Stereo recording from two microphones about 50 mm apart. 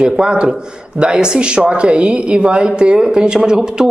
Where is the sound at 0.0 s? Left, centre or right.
Centre.